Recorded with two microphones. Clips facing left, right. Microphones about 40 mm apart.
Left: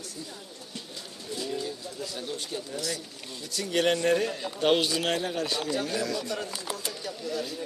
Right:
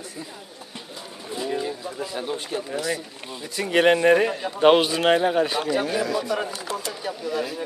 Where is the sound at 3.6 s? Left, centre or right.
Right.